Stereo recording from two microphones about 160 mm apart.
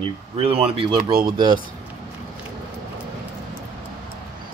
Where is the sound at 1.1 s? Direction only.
65° right (ahead or behind).